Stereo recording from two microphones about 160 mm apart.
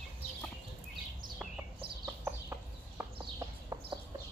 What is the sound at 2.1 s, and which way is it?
Bird, 15° right (ahead or behind).